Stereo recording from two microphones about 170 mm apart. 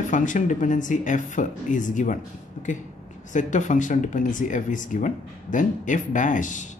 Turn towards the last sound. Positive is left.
turn(degrees=50)  # may be behind; listen again after turning